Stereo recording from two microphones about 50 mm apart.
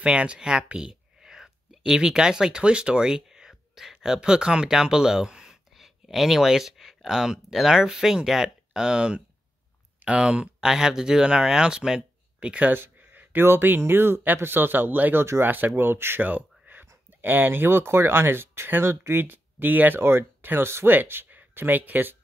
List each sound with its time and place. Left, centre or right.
0.0 s speech: right
10.6 s speech: centre
12.7 s speech: right
16.2 s a sound: right
17.2 s speech: right
20.0 s speech: right